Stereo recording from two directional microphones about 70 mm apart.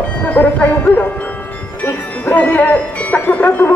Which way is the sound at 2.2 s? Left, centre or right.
Left.